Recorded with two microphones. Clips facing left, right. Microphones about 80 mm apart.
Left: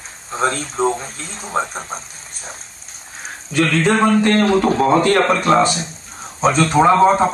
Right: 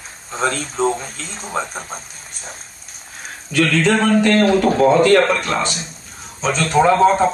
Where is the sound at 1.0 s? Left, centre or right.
Left.